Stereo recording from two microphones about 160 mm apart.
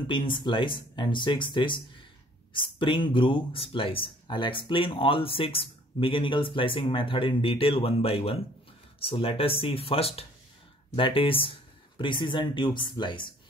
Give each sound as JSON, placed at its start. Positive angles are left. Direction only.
{"t": 0.0, "sound": "speech", "side_deg": 30}